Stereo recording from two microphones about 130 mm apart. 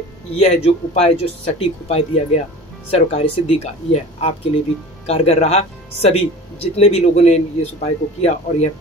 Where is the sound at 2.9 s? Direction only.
50° left (ahead or behind).